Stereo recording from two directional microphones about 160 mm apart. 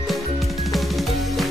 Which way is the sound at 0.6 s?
Centre (ahead or behind).